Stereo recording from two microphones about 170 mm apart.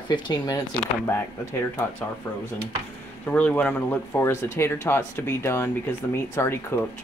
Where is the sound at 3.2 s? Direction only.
10° left (ahead or behind).